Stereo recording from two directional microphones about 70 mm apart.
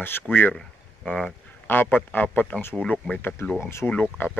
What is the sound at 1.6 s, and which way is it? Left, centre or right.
A man's voice, left.